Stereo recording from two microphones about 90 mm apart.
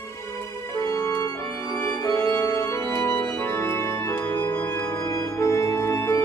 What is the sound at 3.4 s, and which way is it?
Organ, 30° left (ahead or behind).